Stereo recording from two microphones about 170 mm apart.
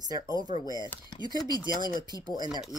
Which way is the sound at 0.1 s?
20° right (ahead or behind).